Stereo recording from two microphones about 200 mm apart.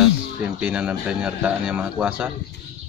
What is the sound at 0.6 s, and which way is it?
Speech, 5° right (ahead or behind).